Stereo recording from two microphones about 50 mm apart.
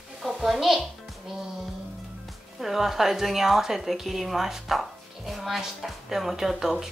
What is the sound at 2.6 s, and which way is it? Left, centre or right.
A woman's voice, centre.